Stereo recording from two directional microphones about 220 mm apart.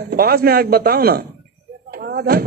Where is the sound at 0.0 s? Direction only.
45° right (ahead or behind).